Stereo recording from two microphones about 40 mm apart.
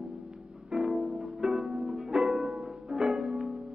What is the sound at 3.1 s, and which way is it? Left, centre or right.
Music, centre.